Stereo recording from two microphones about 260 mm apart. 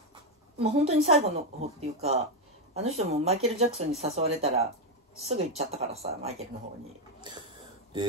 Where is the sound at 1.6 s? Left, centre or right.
Right.